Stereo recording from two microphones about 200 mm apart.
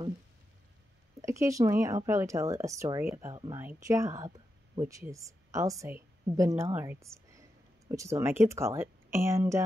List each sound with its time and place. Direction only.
1.2 s a woman's voice: 15° right (ahead or behind)